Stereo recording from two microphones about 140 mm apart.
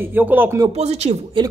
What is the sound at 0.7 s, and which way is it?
Speech, 50° right (ahead or behind).